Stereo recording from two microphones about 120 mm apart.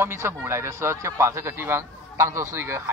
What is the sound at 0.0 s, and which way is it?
A man's voice, 20° right (ahead or behind).